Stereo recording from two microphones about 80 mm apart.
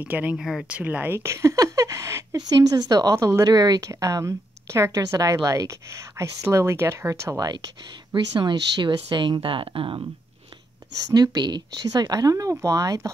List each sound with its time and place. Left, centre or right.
0.0 s speech: right
0.4 s speech: centre
0.7 s speech: centre; by 2.2 s right
2.3 s speech: right
3.5 s speech: right
8.1 s speech: right
11.1 s speech: right